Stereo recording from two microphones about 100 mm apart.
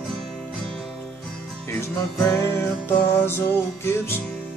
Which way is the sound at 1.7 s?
25° left (ahead or behind).